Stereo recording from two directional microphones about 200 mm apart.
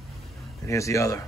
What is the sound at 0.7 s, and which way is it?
Speech, 15° left (ahead or behind).